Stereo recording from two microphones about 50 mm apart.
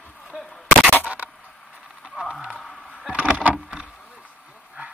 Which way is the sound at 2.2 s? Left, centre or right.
Centre.